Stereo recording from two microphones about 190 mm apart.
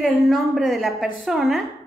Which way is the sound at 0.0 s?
Centre (ahead or behind).